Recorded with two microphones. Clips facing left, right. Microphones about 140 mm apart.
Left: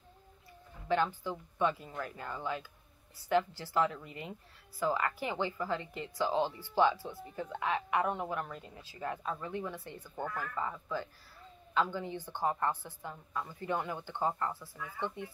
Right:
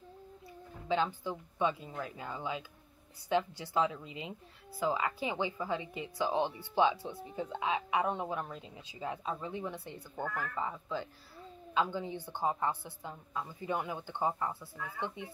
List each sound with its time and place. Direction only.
0.8 s speech: 15° right (ahead or behind)